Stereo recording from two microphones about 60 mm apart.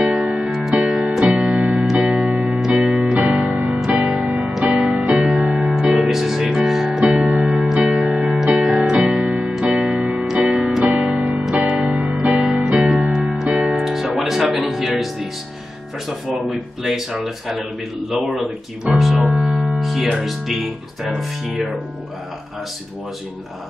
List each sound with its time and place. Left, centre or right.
0.0 s music: centre
1.2 s music: centre
3.3 s music: centre
4.4 s music: centre
7.0 s music: centre
7.3 s music: centre
8.6 s keyboard: centre
10.9 s keyboard: centre
11.4 s music: centre
16.1 s a sound: centre
18.1 s speech: centre
19.8 s music: centre
20.2 s speech: centre